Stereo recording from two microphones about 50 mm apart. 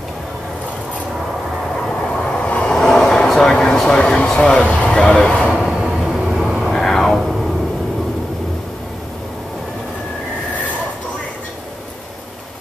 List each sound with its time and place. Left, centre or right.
2.4 s vehicle: left
2.7 s vehicle: centre
4.0 s speech: centre
4.8 s a sound: centre
5.1 s speech: left
5.5 s train: centre
6.7 s a sound: centre